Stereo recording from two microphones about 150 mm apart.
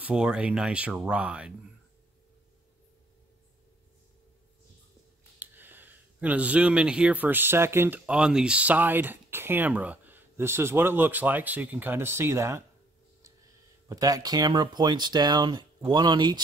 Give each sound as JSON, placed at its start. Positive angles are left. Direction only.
{"t": 0.0, "sound": "speech", "side_deg": -5}
{"t": 5.4, "sound": "speech", "side_deg": -15}
{"t": 13.8, "sound": "speech", "side_deg": -25}